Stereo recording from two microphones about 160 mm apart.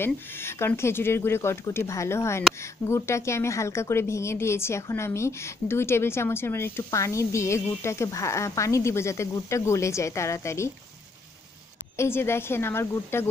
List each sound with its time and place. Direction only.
0.0 s a woman's voice: 15° left (ahead or behind)
12.0 s a woman's voice: 15° left (ahead or behind)